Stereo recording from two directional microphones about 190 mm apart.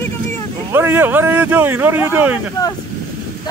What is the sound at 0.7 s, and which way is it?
Speech, 10° right (ahead or behind).